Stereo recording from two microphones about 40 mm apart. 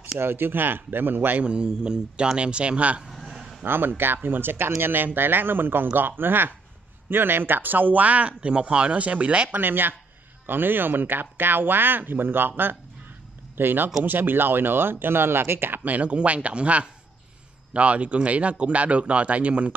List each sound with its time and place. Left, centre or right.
0.2 s speech: right
1.4 s speech: right
3.3 s a sound: centre
3.6 s speech: right
9.6 s speech: right
15.8 s speech: right